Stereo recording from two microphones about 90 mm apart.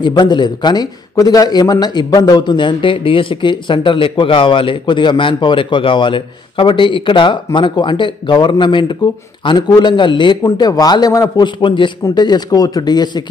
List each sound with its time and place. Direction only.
0.0 s a man's voice: 55° left (ahead or behind)
10.4 s a man's voice: 40° left (ahead or behind)
11.4 s a man's voice: 65° left (ahead or behind)
12.0 s a man's voice: 50° left (ahead or behind)